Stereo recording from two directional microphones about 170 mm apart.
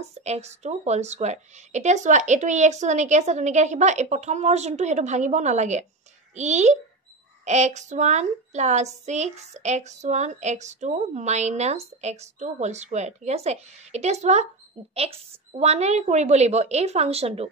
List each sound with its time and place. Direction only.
0.0 s speech: 40° right (ahead or behind)